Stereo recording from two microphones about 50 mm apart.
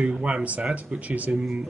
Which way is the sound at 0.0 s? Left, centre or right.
Right.